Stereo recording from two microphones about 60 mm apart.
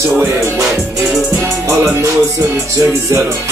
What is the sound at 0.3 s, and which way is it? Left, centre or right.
Music, right.